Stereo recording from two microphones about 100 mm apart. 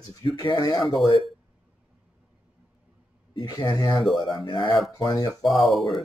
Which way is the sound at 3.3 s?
45° left (ahead or behind).